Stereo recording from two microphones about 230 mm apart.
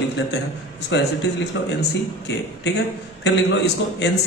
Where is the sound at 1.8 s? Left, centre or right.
Left.